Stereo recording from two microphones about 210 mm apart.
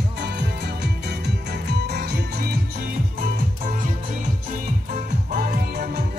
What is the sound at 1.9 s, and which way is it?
Music, 50° right (ahead or behind).